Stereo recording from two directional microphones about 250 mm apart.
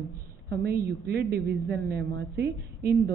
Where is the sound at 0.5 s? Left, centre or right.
Right.